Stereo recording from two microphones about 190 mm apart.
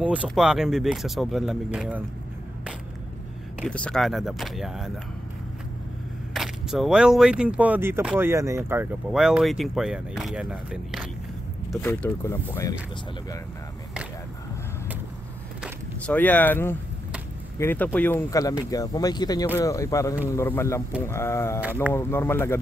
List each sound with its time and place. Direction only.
0.0 s speech: 5° right (ahead or behind)
3.6 s speech: 5° left (ahead or behind)
6.3 s speech: centre (ahead or behind)
11.8 s speech: 10° left (ahead or behind)
16.1 s speech: 10° left (ahead or behind)